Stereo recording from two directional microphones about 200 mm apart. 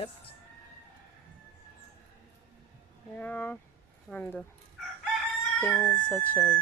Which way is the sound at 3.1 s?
10° left (ahead or behind).